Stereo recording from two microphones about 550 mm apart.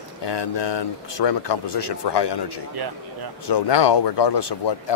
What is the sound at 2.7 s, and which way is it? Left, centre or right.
Speech, right.